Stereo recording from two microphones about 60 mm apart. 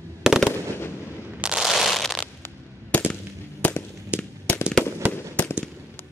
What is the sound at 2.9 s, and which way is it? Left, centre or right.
Fireworks, left.